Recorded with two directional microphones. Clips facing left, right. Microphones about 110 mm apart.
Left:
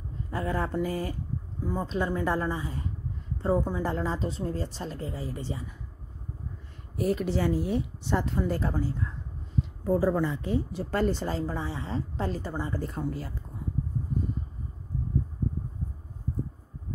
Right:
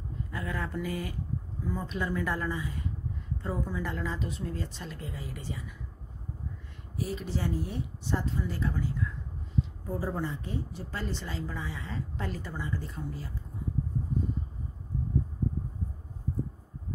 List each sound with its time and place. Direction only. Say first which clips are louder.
0.3 s a woman's voice: left 6 dB; 35° left (ahead or behind)
7.0 s speech: left 7 dB; 60° left (ahead or behind)
8.5 s a woman's voice: left 4 dB; 45° left (ahead or behind)
9.8 s a woman's voice: left 13 dB; 90° left; by 12.9 s 40° left (ahead or behind)
12.9 s speech: left 6 dB; 65° left (ahead or behind)